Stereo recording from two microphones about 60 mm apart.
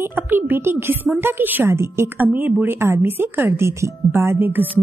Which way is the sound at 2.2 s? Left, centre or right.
Right.